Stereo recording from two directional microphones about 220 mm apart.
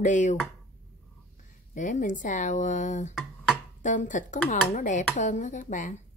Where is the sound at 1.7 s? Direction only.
35° left (ahead or behind).